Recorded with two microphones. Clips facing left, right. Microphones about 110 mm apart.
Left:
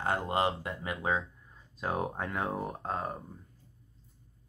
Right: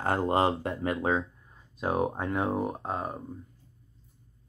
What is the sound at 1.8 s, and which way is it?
Speech, 20° right (ahead or behind).